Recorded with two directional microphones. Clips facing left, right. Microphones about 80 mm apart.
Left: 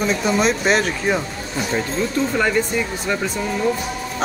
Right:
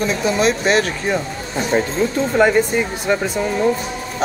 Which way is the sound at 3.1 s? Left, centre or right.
Right.